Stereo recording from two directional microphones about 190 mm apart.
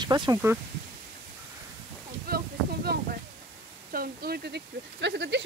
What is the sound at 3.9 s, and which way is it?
Speech, 55° right (ahead or behind).